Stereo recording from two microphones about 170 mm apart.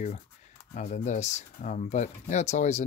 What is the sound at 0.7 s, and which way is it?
Speech, 45° left (ahead or behind).